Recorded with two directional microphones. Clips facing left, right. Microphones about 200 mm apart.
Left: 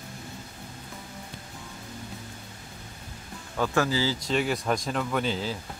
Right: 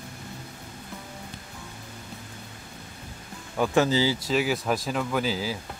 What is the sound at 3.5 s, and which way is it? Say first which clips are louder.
Speech: right 3 dB; 15° right (ahead or behind).